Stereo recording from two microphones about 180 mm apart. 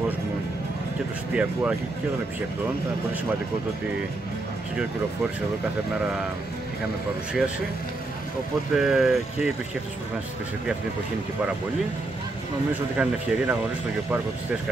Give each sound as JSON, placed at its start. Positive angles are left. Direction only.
{"t": 1.3, "sound": "speech", "side_deg": -5}
{"t": 8.7, "sound": "speech", "side_deg": 0}
{"t": 12.9, "sound": "speech", "side_deg": -5}